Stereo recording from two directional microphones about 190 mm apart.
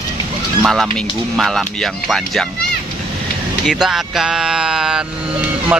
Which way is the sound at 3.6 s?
Centre (ahead or behind).